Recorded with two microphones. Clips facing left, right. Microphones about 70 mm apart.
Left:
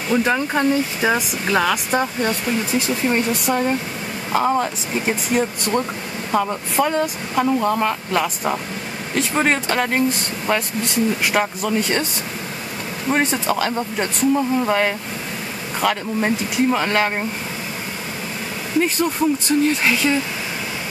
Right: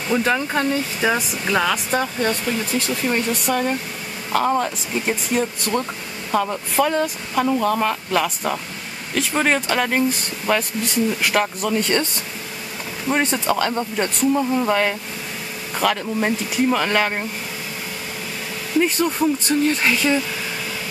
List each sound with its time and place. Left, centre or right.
0.1 s speech: centre
1.0 s speech: left
1.4 s speech: centre
13.1 s speech: centre
18.8 s speech: centre